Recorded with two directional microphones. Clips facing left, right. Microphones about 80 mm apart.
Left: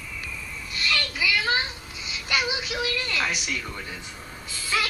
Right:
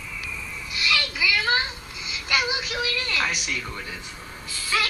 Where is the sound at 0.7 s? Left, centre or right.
Left.